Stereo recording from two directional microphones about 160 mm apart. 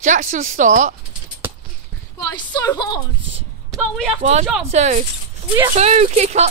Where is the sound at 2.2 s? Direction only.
20° left (ahead or behind).